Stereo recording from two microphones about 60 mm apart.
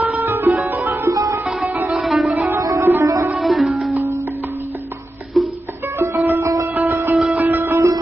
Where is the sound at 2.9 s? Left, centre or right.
Right.